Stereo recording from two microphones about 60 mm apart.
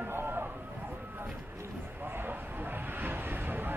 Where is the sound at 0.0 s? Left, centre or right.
Right.